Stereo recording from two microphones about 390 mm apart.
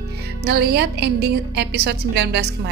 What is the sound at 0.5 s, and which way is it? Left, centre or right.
A woman's voice, right.